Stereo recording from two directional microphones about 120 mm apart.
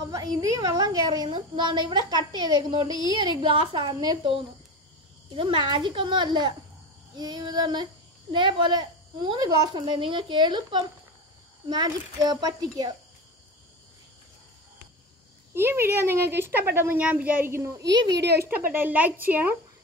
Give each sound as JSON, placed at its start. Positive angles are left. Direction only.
{"t": 0.0, "sound": "speech", "side_deg": -30}
{"t": 2.9, "sound": "speech", "side_deg": 40}
{"t": 3.4, "sound": "a woman's voice", "side_deg": -45}
{"t": 5.3, "sound": "speech", "side_deg": -45}
{"t": 15.5, "sound": "a woman's voice", "side_deg": -20}